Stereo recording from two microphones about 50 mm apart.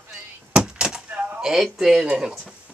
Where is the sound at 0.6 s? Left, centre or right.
Centre.